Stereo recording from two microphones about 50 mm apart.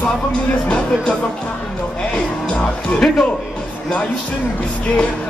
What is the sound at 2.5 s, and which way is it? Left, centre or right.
Music, left.